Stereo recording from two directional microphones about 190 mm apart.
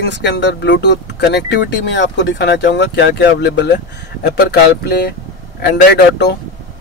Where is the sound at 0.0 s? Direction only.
65° left (ahead or behind).